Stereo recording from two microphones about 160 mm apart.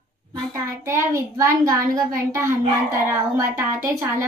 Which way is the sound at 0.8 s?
15° right (ahead or behind).